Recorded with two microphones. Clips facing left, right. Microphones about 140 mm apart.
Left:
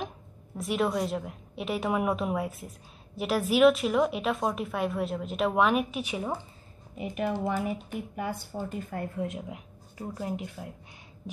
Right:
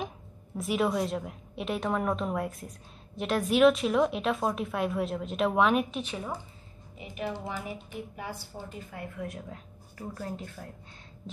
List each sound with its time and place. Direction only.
0.6 s a woman's voice: centre (ahead or behind)
7.0 s speech: 50° left (ahead or behind)
9.1 s speech: 25° left (ahead or behind)